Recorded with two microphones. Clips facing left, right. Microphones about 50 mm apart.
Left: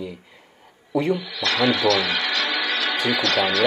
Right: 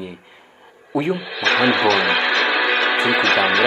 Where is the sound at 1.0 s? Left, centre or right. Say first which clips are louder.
Right 2 dB; right.